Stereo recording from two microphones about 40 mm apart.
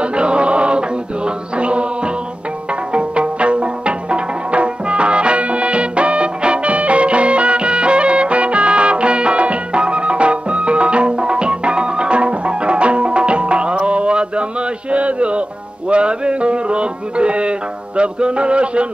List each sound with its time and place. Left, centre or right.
0.0 s music: right
2.9 s music: right
14.9 s a sound: right
15.9 s music: right